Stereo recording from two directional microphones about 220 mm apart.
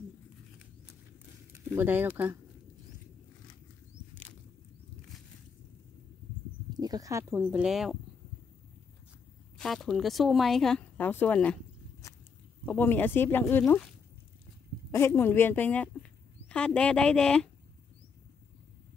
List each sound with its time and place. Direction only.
1.5 s speech: 10° right (ahead or behind)
6.8 s speech: 15° right (ahead or behind); by 8.0 s centre (ahead or behind)
9.6 s speech: centre (ahead or behind)
12.6 s speech: 10° left (ahead or behind)
14.9 s speech: 10° left (ahead or behind)